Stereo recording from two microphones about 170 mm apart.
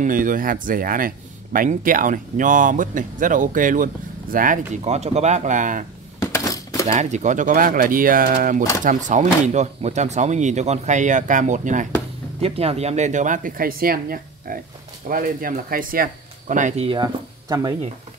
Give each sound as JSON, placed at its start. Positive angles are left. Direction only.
{"t": 0.0, "sound": "speech", "side_deg": -55}
{"t": 4.8, "sound": "speech", "side_deg": -40}
{"t": 6.1, "sound": "coin", "side_deg": 20}
{"t": 6.9, "sound": "speech", "side_deg": -45}
{"t": 12.4, "sound": "speech", "side_deg": -35}
{"t": 16.8, "sound": "speech", "side_deg": -25}